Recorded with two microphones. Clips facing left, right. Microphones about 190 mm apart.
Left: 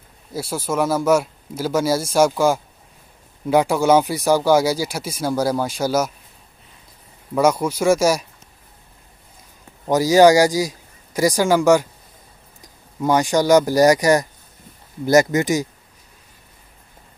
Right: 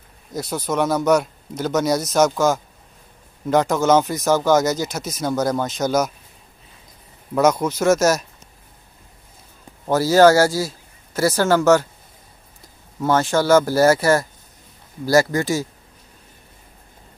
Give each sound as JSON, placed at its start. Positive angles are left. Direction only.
{"t": 0.3, "sound": "speech", "side_deg": 5}
{"t": 7.3, "sound": "speech", "side_deg": 10}
{"t": 9.8, "sound": "speech", "side_deg": 15}